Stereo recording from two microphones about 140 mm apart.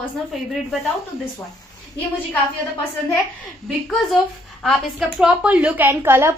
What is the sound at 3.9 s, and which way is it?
Speech, centre (ahead or behind).